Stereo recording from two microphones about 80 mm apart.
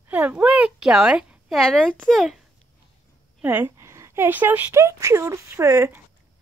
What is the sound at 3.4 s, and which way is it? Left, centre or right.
Speech, right.